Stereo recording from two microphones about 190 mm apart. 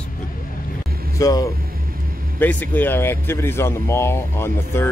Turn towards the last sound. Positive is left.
turn(degrees=15)  # may be behind; listen again after turning